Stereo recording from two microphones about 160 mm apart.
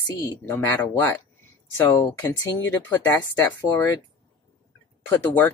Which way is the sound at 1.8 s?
15° left (ahead or behind).